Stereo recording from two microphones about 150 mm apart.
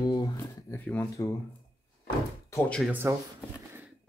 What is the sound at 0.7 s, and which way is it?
Speech, 10° left (ahead or behind).